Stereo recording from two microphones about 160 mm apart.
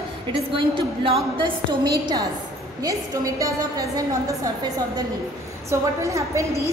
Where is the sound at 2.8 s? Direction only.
20° right (ahead or behind).